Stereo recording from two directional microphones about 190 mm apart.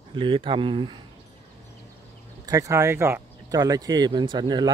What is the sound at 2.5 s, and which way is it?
Speech, 15° right (ahead or behind).